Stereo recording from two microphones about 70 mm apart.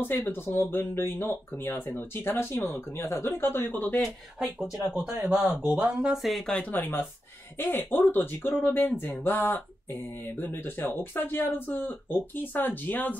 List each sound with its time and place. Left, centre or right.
0.1 s speech: left
4.0 s speech: centre
5.6 s speech: right
6.1 s speech: centre
6.4 s speech: centre
6.7 s speech: left